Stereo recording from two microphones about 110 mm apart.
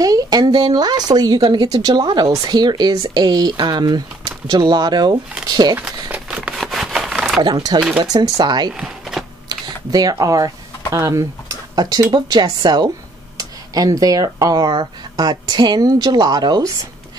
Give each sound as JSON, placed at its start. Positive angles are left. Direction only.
{"t": 0.0, "sound": "speech", "side_deg": -35}
{"t": 5.8, "sound": "speech", "side_deg": -15}
{"t": 6.3, "sound": "a sound", "side_deg": -10}
{"t": 8.0, "sound": "speech", "side_deg": -40}
{"t": 8.7, "sound": "a sound", "side_deg": -5}
{"t": 9.5, "sound": "speech", "side_deg": -35}